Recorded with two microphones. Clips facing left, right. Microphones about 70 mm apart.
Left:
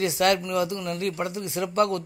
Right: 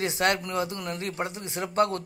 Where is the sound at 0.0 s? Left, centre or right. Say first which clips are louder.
Left 3 dB; right.